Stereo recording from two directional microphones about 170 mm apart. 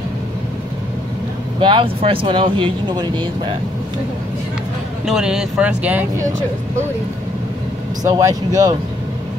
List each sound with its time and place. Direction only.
1.6 s speech: 30° right (ahead or behind)
5.0 s speech: 5° right (ahead or behind)
8.0 s speech: 20° right (ahead or behind)